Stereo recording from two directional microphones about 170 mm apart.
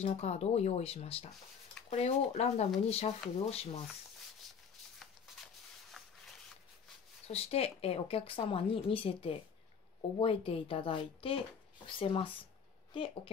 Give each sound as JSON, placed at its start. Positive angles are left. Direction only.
{"t": 0.0, "sound": "speech", "side_deg": 40}
{"t": 6.0, "sound": "a sound", "side_deg": 0}
{"t": 7.2, "sound": "speech", "side_deg": 35}